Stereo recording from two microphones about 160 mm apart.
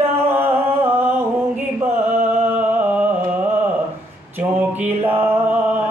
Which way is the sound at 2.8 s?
10° right (ahead or behind).